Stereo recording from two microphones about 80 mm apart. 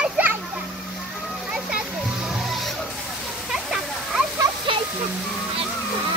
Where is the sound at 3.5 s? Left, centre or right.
Centre.